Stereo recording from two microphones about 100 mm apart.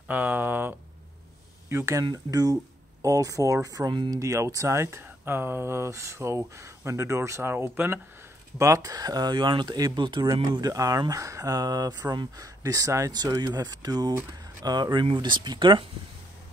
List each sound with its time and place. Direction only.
0.1 s speech: 15° right (ahead or behind)
1.7 s speech: 30° right (ahead or behind); by 15.8 s 50° right (ahead or behind)